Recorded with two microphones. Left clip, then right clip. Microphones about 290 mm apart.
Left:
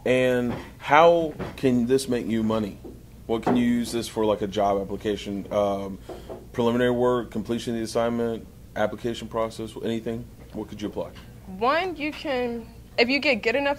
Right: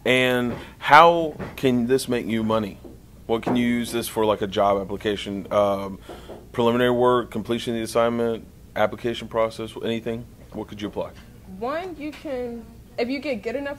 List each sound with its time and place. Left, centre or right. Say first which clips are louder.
0.0 s speech: right 2 dB; right
11.6 s a woman's voice: left 5 dB; left